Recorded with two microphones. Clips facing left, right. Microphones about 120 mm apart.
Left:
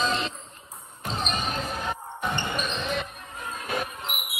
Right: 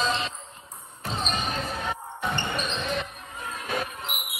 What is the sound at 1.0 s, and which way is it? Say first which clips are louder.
Basketball bounce: even; centre (ahead or behind).